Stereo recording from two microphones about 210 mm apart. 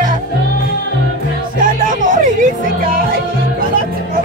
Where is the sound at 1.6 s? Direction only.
40° right (ahead or behind).